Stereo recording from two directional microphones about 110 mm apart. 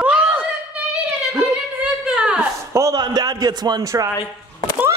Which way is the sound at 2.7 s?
25° right (ahead or behind).